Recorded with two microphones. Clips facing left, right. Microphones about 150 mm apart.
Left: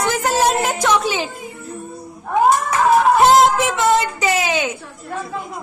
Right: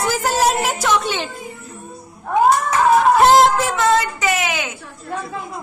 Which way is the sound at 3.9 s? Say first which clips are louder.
Left 1 dB; 30° left (ahead or behind).